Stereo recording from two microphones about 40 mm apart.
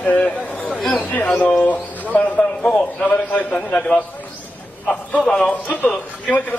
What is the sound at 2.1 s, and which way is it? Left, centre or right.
A man's voice, left.